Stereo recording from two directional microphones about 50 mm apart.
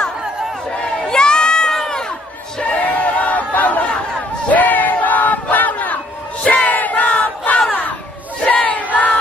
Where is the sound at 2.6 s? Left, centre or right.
Left.